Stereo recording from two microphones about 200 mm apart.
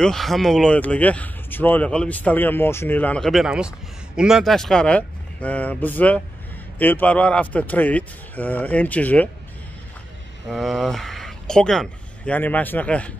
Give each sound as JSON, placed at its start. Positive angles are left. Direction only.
{"t": 0.0, "sound": "speech", "side_deg": 0}
{"t": 10.5, "sound": "speech", "side_deg": 0}